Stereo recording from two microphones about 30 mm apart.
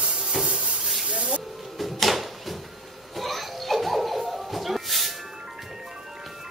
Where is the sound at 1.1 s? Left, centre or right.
Right.